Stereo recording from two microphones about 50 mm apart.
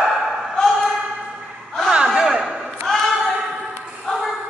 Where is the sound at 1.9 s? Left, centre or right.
Centre.